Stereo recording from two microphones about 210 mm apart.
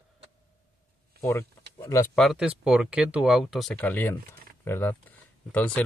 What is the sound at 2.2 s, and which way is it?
Speech, centre (ahead or behind).